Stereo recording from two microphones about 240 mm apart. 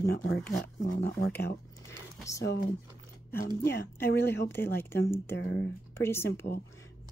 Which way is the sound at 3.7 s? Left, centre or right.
Left.